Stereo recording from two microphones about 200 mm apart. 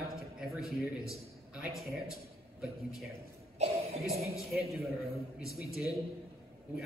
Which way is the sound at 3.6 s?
30° right (ahead or behind).